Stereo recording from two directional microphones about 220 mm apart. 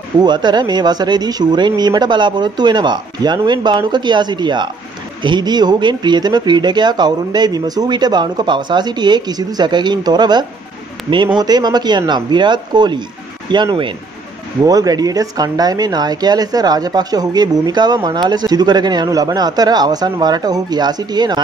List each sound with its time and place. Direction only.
0.2 s speech: 20° right (ahead or behind)